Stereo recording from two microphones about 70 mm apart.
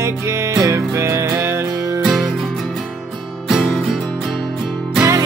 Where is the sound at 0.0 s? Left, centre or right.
Right.